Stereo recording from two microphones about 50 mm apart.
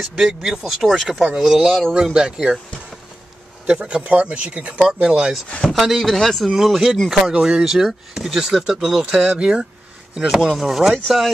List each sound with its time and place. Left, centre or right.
0.0 s speech: centre
1.0 s speech: centre
3.6 s speech: right
5.0 s speech: centre
5.8 s speech: centre
9.0 s speech: right; by 11.0 s centre